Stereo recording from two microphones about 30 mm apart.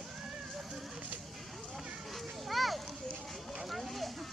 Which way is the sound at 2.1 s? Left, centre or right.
Centre.